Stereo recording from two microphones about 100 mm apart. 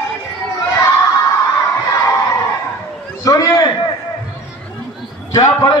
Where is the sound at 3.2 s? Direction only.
30° left (ahead or behind).